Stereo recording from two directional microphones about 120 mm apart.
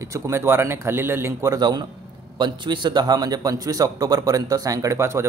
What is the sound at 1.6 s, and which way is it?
A man's voice, 35° right (ahead or behind).